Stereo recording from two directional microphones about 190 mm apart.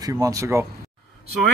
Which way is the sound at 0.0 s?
15° right (ahead or behind).